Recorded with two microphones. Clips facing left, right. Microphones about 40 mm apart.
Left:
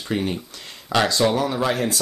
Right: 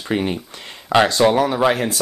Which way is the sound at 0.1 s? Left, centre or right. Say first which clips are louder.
Right 3 dB; right.